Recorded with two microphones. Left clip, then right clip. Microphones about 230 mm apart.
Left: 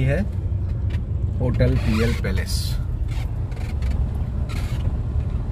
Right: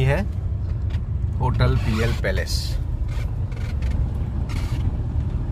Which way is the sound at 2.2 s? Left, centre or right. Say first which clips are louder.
Right 5 dB; right.